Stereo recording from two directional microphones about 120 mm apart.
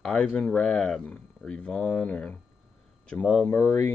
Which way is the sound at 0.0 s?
10° left (ahead or behind).